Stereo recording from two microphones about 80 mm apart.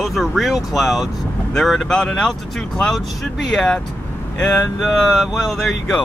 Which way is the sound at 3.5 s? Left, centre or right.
Centre.